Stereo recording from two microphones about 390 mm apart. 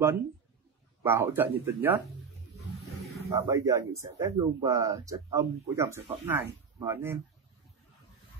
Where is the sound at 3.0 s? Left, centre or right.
Centre.